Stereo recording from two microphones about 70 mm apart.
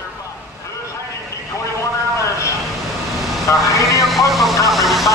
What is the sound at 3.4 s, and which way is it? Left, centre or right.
Vehicle, left.